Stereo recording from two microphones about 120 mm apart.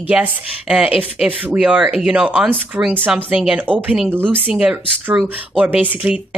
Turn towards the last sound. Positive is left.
turn(degrees=-10)  # may be behind; listen again after turning